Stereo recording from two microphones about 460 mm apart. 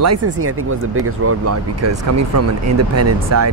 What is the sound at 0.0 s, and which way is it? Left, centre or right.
Speech, right.